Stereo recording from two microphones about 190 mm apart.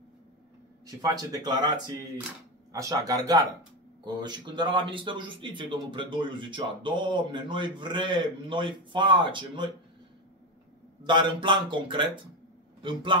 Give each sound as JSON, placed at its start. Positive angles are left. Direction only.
{"t": 0.8, "sound": "a man's voice", "side_deg": -20}
{"t": 2.7, "sound": "a man's voice", "side_deg": -20}
{"t": 11.1, "sound": "a man's voice", "side_deg": -25}